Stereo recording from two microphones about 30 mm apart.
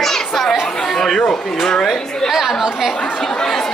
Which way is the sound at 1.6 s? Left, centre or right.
Left.